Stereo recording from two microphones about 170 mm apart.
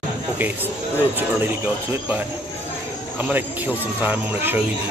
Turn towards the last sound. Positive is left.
turn(degrees=-10)  # may be behind; listen again after turning